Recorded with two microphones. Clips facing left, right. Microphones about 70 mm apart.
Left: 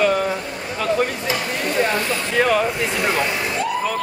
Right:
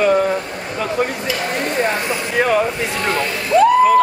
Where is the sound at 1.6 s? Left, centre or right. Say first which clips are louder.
Right 1 dB; right.